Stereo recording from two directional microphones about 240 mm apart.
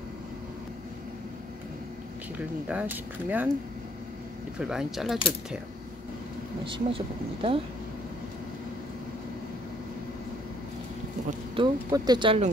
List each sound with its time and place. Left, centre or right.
2.3 s speech: centre
4.6 s speech: centre
6.6 s speech: right
11.2 s speech: centre